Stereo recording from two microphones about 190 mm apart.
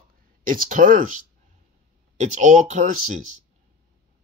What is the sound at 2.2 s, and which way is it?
Speech, 40° right (ahead or behind).